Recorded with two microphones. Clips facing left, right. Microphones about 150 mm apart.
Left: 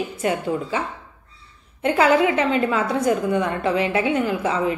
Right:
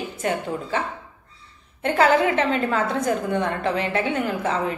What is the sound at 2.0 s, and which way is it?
A woman's voice, 10° left (ahead or behind).